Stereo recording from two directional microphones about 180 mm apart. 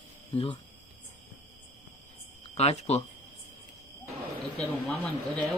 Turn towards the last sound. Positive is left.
turn(degrees=5)  # may be behind; listen again after turning